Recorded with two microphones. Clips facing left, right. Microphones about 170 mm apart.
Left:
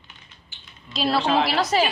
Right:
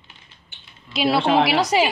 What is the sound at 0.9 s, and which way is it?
Speech, 10° right (ahead or behind).